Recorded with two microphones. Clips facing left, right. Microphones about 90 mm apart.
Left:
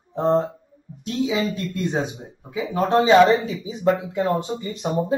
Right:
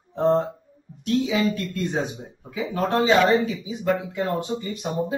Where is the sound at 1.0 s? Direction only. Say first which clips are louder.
Right 1 dB; 20° left (ahead or behind).